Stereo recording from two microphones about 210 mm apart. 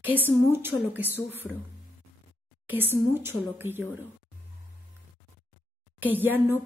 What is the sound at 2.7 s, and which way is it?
Speech, 10° right (ahead or behind).